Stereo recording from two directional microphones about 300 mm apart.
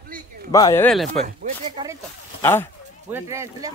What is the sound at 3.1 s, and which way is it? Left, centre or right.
Speech, centre.